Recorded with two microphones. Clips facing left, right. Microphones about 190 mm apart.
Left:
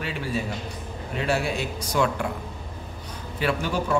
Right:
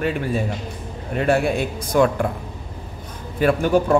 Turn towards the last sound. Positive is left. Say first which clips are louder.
# right 8 dB
turn(degrees=-55)  # may be behind; listen again after turning